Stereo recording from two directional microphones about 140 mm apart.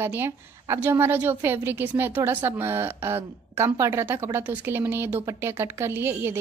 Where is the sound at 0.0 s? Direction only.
15° right (ahead or behind).